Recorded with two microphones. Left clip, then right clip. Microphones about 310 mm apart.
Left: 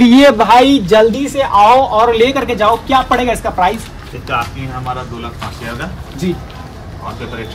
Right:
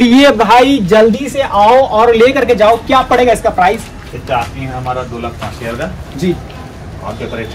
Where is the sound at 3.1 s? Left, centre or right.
Left.